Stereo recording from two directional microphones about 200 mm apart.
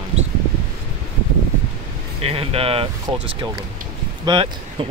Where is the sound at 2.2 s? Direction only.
30° right (ahead or behind).